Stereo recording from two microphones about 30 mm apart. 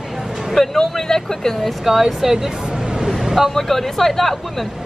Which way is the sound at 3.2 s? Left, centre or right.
Centre.